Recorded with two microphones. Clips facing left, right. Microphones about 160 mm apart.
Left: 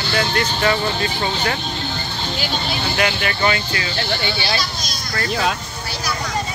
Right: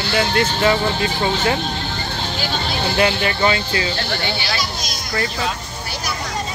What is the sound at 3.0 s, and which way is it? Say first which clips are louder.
Speech: right 3 dB; 25° right (ahead or behind).